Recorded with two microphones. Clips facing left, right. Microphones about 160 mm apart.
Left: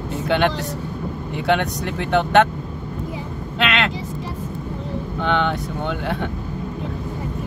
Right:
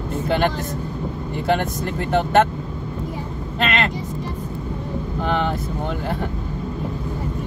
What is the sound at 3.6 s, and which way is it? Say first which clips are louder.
Vehicle: even; 80° left.